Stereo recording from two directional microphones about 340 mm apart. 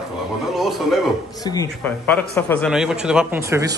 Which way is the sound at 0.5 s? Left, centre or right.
Centre.